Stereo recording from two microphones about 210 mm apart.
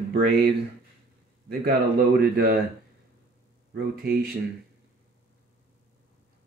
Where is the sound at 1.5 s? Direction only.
45° right (ahead or behind).